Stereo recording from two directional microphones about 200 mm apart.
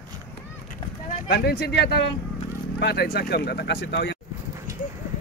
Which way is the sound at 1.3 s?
55° left (ahead or behind).